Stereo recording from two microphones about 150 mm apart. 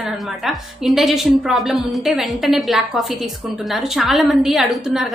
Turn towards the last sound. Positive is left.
turn(degrees=0)  # may be behind; listen again after turning